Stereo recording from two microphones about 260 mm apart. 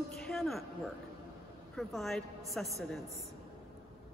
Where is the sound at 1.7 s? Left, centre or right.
Centre.